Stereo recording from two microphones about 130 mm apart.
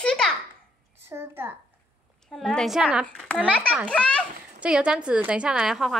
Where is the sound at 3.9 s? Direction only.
10° left (ahead or behind).